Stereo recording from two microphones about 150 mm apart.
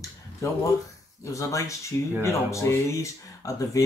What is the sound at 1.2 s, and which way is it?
Speech, 20° left (ahead or behind).